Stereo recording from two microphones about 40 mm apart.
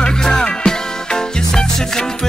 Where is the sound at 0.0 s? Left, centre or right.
Centre.